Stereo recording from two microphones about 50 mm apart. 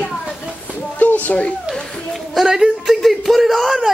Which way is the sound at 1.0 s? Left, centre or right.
Left.